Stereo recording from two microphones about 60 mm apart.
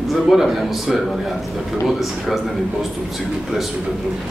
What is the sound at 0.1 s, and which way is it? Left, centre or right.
A man's voice, centre.